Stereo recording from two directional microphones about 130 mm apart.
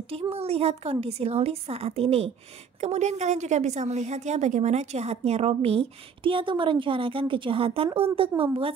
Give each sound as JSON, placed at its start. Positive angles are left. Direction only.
{"t": 0.1, "sound": "a woman's voice", "side_deg": -50}